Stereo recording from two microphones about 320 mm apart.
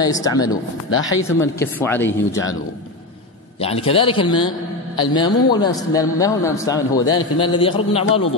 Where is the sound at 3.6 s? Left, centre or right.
Centre.